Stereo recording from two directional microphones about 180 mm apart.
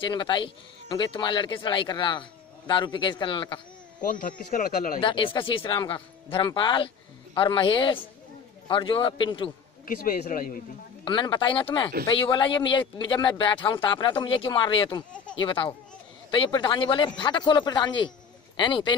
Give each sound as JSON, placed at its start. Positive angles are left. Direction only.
{"t": 0.0, "sound": "speech", "side_deg": 25}
{"t": 4.0, "sound": "speech", "side_deg": 50}
{"t": 5.0, "sound": "speech", "side_deg": 30}
{"t": 9.8, "sound": "speech", "side_deg": 50}
{"t": 11.1, "sound": "speech", "side_deg": 25}